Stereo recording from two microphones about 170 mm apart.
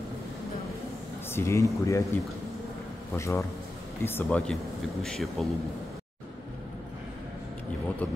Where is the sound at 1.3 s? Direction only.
15° left (ahead or behind).